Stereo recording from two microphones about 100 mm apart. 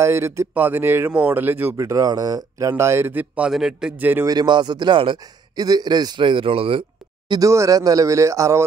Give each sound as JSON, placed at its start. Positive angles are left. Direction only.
{"t": 0.0, "sound": "speech", "side_deg": -30}
{"t": 2.7, "sound": "speech", "side_deg": -25}
{"t": 3.5, "sound": "a man's voice", "side_deg": -5}
{"t": 3.9, "sound": "speech", "side_deg": -20}
{"t": 4.3, "sound": "a man's voice", "side_deg": -45}
{"t": 5.6, "sound": "a man's voice", "side_deg": -40}
{"t": 7.2, "sound": "speech", "side_deg": -35}